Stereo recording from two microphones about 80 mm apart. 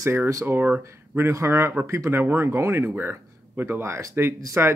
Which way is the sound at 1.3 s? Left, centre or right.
Right.